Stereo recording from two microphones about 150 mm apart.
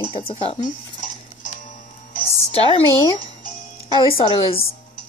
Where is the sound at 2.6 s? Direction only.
35° left (ahead or behind).